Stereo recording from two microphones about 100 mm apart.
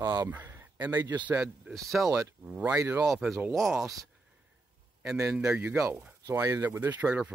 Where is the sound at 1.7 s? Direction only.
Centre (ahead or behind).